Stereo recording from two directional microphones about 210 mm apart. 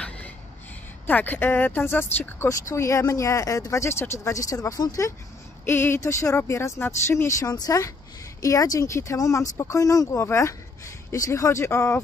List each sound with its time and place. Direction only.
1.0 s speech: 10° left (ahead or behind)